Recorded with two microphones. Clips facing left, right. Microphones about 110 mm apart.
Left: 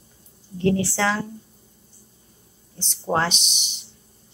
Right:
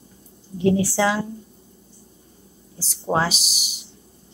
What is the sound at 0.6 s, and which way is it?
Speech, 15° right (ahead or behind).